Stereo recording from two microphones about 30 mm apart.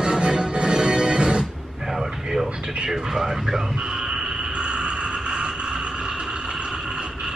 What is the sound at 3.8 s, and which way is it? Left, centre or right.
Frog, right.